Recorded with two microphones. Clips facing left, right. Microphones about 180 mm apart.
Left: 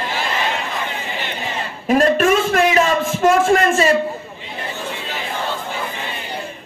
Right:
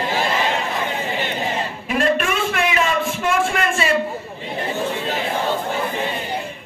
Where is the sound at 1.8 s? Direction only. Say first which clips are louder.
Left 6 dB; 40° left (ahead or behind).